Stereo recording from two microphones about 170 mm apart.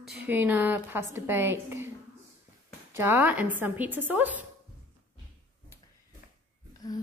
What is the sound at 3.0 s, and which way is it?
A woman's voice, 10° right (ahead or behind).